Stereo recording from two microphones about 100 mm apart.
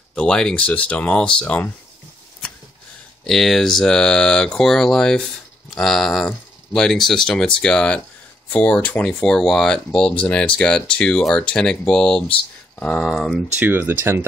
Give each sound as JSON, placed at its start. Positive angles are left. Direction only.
{"t": 0.1, "sound": "speech", "side_deg": 10}
{"t": 3.3, "sound": "speech", "side_deg": 0}
{"t": 13.6, "sound": "speech", "side_deg": -20}